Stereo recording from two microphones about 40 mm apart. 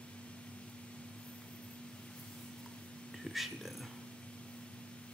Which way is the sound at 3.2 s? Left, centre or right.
Centre.